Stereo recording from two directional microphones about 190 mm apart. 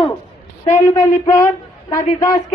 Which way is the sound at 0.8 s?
15° left (ahead or behind).